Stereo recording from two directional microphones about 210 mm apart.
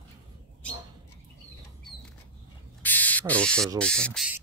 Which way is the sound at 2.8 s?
10° left (ahead or behind).